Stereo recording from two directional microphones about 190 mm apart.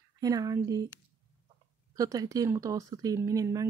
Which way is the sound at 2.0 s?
20° right (ahead or behind).